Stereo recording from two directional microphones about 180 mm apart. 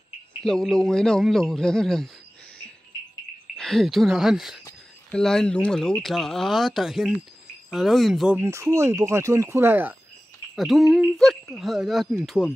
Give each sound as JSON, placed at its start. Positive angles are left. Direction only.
{"t": 0.4, "sound": "speech", "side_deg": 5}
{"t": 3.5, "sound": "speech", "side_deg": 0}
{"t": 8.4, "sound": "speech", "side_deg": -15}